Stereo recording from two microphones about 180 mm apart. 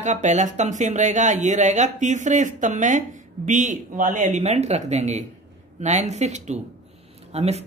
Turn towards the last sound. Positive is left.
turn(degrees=-35)  # may be behind; listen again after turning